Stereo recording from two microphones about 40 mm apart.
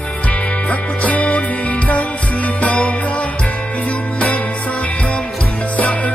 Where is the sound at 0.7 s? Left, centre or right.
Left.